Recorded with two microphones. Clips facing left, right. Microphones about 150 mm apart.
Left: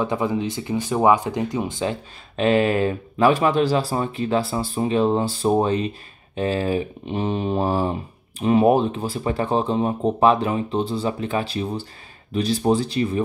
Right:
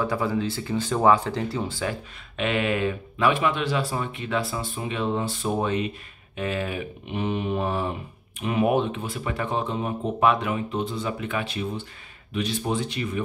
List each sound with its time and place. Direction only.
0.0 s speech: 20° left (ahead or behind)
2.3 s speech: 35° left (ahead or behind)